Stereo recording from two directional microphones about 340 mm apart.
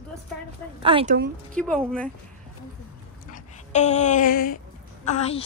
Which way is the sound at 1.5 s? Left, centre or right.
Centre.